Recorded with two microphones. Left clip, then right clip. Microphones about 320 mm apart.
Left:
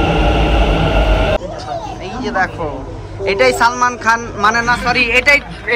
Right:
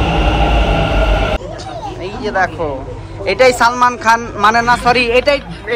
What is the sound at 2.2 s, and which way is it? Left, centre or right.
A man's voice, centre.